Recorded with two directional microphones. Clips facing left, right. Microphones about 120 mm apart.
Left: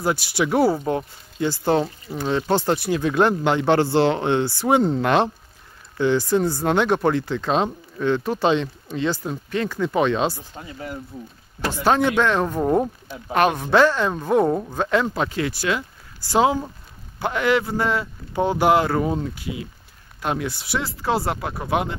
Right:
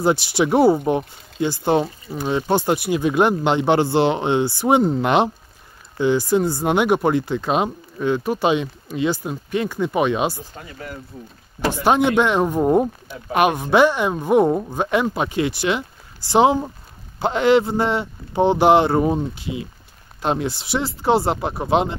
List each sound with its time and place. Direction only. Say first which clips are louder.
0.0 s a man's voice: right 4 dB; 25° right (ahead or behind)
11.6 s a man's voice: right 2 dB; 15° right (ahead or behind)